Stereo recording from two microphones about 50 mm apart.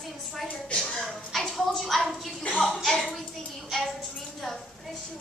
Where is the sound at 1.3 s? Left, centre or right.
Centre.